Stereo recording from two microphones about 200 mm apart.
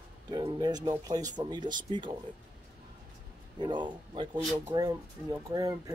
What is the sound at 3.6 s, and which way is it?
Speech, 20° right (ahead or behind).